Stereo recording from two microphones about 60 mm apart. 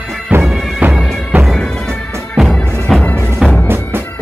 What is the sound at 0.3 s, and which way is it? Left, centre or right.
Bagpipes, right.